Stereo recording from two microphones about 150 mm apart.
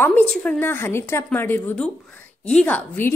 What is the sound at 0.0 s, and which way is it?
A woman's voice, 10° left (ahead or behind).